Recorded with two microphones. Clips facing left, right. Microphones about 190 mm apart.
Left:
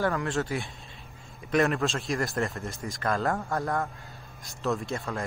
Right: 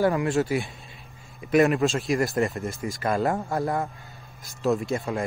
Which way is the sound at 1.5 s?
5° right (ahead or behind).